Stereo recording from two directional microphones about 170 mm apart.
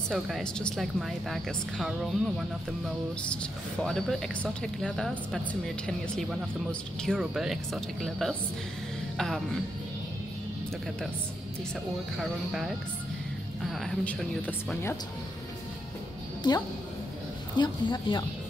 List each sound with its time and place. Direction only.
0.1 s speech: centre (ahead or behind)
3.8 s speech: centre (ahead or behind)
6.7 s speech: 5° left (ahead or behind)
12.2 s speech: centre (ahead or behind)
16.4 s speech: 25° left (ahead or behind)